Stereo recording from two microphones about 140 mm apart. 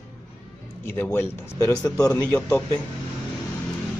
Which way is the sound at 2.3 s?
15° left (ahead or behind).